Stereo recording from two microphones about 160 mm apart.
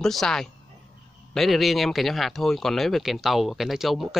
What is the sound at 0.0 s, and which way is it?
Speech, centre (ahead or behind).